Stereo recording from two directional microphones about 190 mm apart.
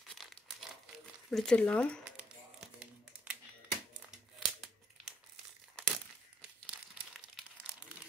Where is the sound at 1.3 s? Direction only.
5° left (ahead or behind).